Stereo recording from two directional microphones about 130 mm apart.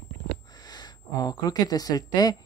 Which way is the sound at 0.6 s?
30° left (ahead or behind).